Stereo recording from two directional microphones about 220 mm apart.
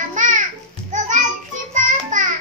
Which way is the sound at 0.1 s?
35° right (ahead or behind).